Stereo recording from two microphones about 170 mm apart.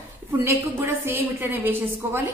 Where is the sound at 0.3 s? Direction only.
15° right (ahead or behind).